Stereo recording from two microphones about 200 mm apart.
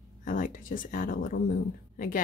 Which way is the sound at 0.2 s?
40° left (ahead or behind).